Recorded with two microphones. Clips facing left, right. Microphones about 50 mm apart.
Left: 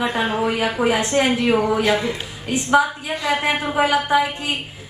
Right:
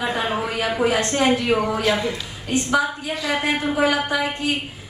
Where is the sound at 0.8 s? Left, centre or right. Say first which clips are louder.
Even; left.